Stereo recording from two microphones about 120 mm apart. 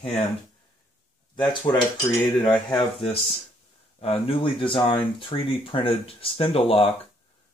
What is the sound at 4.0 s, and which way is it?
Speech, 50° left (ahead or behind).